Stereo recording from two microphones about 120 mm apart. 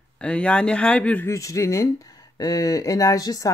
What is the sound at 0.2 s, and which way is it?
Speech, 10° left (ahead or behind).